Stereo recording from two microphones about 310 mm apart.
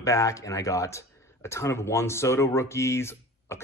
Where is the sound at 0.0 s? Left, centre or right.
Centre.